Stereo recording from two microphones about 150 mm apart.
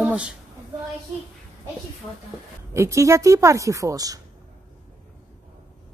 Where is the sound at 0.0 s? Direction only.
5° right (ahead or behind).